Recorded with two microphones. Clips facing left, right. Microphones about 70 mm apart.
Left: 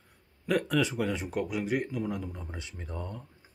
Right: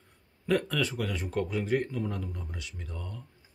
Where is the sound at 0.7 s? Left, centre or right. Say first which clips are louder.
Left 3 dB; centre.